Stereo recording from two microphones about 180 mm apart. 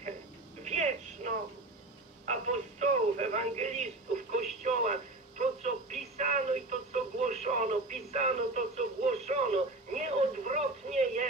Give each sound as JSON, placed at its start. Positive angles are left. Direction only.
{"t": 0.7, "sound": "telephone", "side_deg": -40}
{"t": 2.2, "sound": "radio", "side_deg": -40}